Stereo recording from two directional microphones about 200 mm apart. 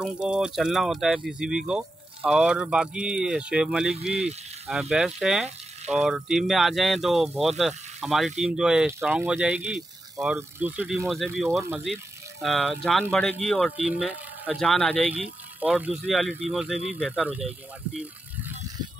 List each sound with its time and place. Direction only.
0.0 s speech: 5° right (ahead or behind)
11.3 s speech: centre (ahead or behind)